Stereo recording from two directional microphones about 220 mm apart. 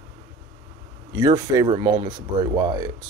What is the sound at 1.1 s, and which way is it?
Speech, 20° right (ahead or behind).